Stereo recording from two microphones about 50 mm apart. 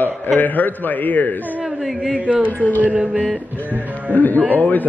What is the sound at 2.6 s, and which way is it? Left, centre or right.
Speech, left.